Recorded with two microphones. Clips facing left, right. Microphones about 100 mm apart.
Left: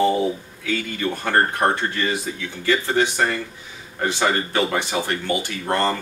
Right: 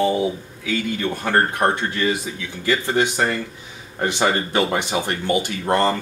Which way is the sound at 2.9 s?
10° right (ahead or behind).